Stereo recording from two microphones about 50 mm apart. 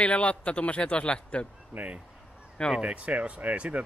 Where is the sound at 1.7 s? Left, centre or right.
Right.